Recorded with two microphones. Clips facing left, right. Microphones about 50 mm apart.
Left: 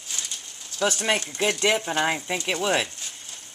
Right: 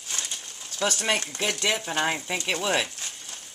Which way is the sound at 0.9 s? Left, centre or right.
Centre.